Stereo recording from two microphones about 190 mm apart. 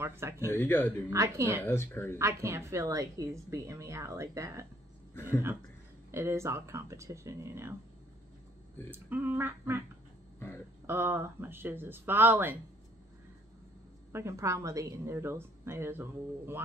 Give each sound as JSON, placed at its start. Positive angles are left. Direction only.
{"t": 0.0, "sound": "a woman's voice", "side_deg": -15}
{"t": 0.5, "sound": "speech", "side_deg": 10}
{"t": 1.1, "sound": "a woman's voice", "side_deg": -15}
{"t": 1.7, "sound": "speech", "side_deg": 15}
{"t": 2.1, "sound": "a woman's voice", "side_deg": -15}
{"t": 6.1, "sound": "a woman's voice", "side_deg": -15}
{"t": 8.9, "sound": "a woman's voice", "side_deg": -10}
{"t": 10.9, "sound": "a woman's voice", "side_deg": -10}
{"t": 14.1, "sound": "a woman's voice", "side_deg": -15}